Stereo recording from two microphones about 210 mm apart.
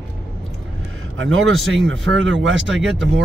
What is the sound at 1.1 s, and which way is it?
Speech, 70° right (ahead or behind).